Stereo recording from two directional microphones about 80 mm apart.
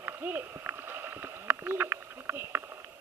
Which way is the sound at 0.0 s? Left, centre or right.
Right.